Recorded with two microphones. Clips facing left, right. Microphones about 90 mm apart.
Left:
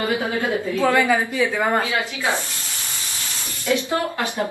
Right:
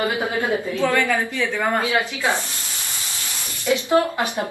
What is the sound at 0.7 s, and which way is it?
A woman's voice, 15° left (ahead or behind).